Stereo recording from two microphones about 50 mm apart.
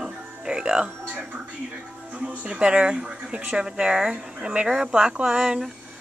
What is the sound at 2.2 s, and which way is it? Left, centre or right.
Speech, right.